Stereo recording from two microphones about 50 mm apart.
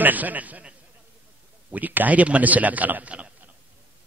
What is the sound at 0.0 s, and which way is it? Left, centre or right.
Speech, right.